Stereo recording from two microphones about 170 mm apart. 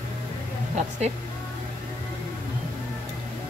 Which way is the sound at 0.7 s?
40° right (ahead or behind).